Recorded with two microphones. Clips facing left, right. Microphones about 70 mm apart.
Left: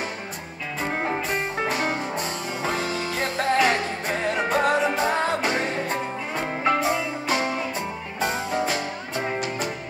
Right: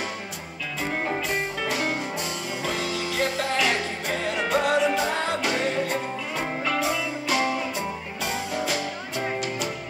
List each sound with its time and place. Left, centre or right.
0.7 s music: left